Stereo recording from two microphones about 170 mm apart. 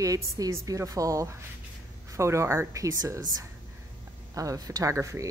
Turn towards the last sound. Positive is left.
turn(degrees=-20)  # may be behind; listen again after turning